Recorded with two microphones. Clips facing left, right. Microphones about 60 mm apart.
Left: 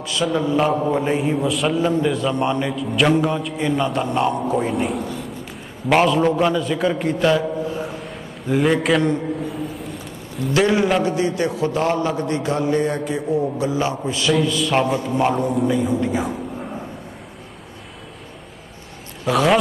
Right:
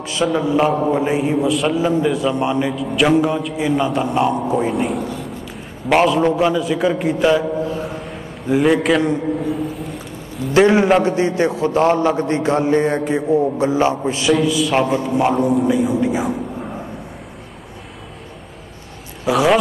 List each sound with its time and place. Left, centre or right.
0.2 s a man's voice: centre
8.0 s a sound: centre
11.0 s a man's voice: right
14.3 s a man's voice: centre
19.2 s a man's voice: centre